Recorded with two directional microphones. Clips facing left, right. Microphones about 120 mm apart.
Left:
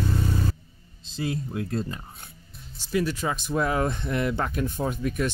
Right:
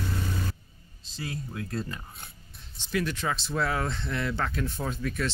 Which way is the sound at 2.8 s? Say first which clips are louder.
Left 4 dB; 10° left (ahead or behind).